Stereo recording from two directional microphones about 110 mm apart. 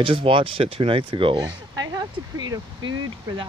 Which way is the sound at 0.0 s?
55° right (ahead or behind).